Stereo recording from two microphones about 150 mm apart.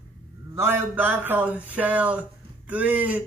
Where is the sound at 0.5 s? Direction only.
15° right (ahead or behind).